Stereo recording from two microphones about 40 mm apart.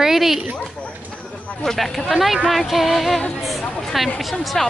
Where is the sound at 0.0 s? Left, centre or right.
Centre.